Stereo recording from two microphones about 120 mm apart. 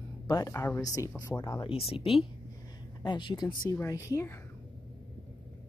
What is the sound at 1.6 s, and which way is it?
Speech, 50° left (ahead or behind).